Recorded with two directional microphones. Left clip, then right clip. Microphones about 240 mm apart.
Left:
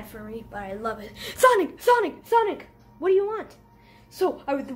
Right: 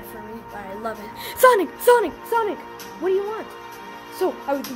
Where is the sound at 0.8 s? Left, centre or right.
Right.